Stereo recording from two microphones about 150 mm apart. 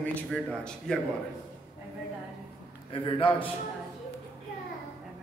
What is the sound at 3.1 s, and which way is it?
Speech, 35° left (ahead or behind).